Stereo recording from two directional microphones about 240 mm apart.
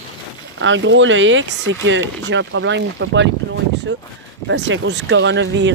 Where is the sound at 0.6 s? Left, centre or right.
Right.